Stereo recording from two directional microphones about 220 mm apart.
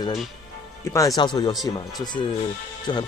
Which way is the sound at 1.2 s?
20° left (ahead or behind).